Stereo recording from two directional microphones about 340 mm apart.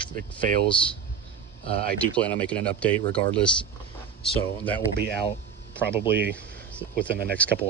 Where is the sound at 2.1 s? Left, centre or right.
Centre.